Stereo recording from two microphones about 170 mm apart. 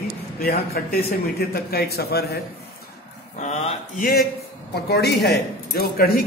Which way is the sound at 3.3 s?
45° left (ahead or behind).